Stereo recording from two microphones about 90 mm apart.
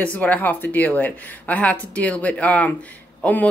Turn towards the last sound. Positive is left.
turn(degrees=15)  # may be behind; listen again after turning